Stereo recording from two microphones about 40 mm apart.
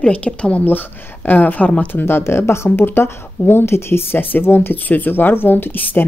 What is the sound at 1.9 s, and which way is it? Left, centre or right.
Speech, left.